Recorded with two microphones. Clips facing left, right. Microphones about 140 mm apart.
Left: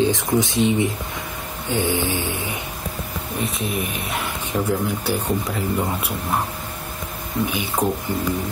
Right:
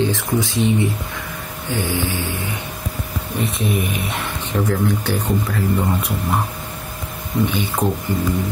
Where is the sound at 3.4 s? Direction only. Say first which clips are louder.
Right 4 dB; centre (ahead or behind).